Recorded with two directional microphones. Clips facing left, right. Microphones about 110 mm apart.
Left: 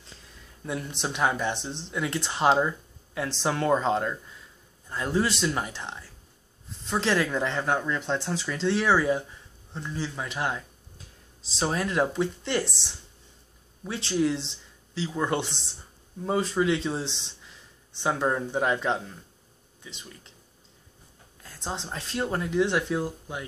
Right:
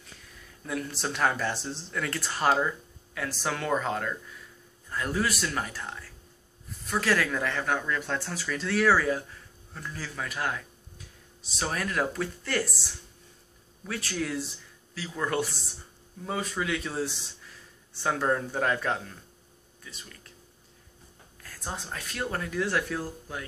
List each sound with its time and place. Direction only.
0.7 s a man's voice: 20° left (ahead or behind)
21.4 s speech: 25° left (ahead or behind)